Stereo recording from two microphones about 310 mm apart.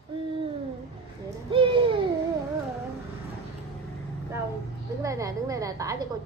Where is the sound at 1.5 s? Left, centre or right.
Centre.